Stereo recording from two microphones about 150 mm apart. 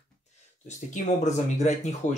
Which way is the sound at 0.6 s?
50° left (ahead or behind).